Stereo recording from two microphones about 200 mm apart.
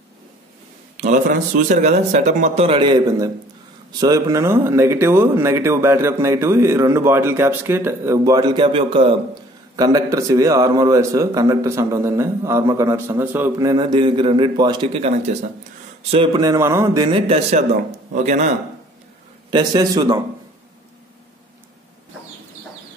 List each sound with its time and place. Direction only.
0.9 s a man's voice: 35° right (ahead or behind)
9.8 s a man's voice: 15° right (ahead or behind)
16.3 s a man's voice: 15° right (ahead or behind)
17.1 s speech: 30° right (ahead or behind)
19.5 s a man's voice: 20° right (ahead or behind)